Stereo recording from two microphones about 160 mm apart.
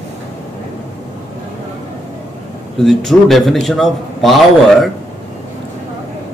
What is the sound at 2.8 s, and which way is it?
A man's voice, centre (ahead or behind).